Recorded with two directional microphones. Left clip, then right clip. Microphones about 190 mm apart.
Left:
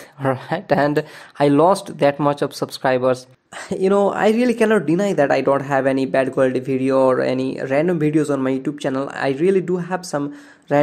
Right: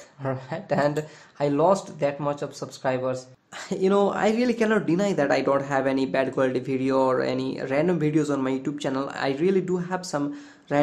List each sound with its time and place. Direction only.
0.2 s speech: 50° left (ahead or behind)
3.5 s speech: 25° left (ahead or behind)